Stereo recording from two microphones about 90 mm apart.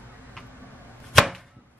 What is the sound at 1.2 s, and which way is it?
Chopping, centre (ahead or behind).